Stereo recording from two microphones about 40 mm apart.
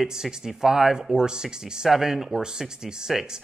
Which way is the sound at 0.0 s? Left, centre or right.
Centre.